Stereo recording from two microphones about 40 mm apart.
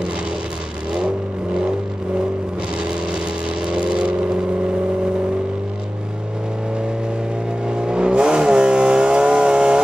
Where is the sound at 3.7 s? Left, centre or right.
Right.